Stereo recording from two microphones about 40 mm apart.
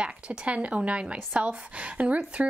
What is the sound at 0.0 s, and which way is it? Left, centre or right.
A woman's voice, right.